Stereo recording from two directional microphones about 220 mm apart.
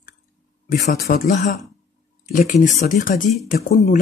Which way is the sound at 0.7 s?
40° left (ahead or behind).